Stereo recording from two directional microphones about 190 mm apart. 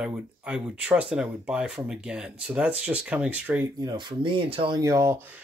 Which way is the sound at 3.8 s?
25° right (ahead or behind).